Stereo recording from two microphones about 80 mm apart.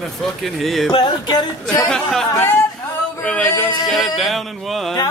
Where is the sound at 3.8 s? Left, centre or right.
Centre.